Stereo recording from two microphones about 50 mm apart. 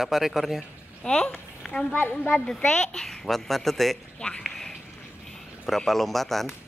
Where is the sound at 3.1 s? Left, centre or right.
Centre.